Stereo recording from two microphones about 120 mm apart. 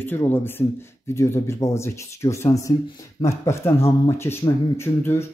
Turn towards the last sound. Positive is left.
turn(degrees=20)  # may be behind; listen again after turning